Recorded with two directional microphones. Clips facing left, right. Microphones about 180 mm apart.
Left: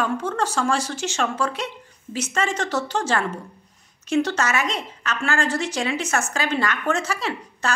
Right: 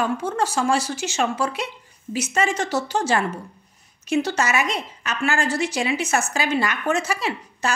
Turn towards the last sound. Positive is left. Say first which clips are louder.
# right 1 dB
turn(degrees=-10)  # may be behind; listen again after turning